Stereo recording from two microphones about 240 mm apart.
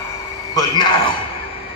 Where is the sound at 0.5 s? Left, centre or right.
Centre.